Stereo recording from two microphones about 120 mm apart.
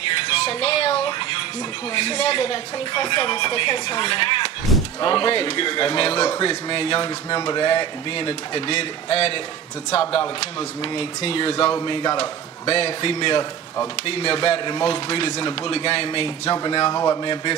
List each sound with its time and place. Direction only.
0.5 s music: 55° left (ahead or behind)
2.0 s a man's voice: 55° left (ahead or behind)
16.4 s speech: 25° left (ahead or behind)